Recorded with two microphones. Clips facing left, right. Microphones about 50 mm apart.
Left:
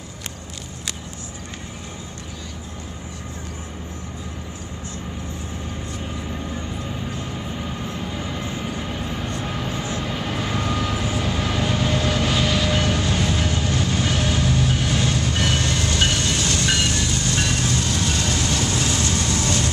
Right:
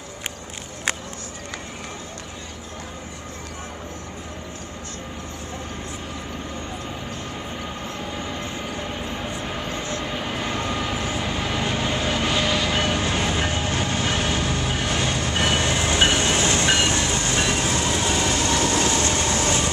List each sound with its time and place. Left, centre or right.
8.0 s train: centre
8.5 s vehicle: centre
9.8 s vehicle: centre
10.0 s vehicle: centre; by 13.9 s right
13.9 s train: centre
18.5 s train: right